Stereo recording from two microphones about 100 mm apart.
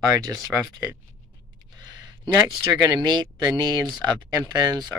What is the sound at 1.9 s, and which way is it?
Speech, 50° right (ahead or behind).